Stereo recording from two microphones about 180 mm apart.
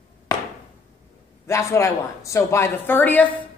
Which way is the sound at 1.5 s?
15° left (ahead or behind).